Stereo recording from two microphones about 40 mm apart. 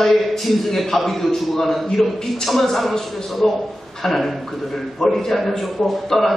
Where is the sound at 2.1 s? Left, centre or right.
Centre.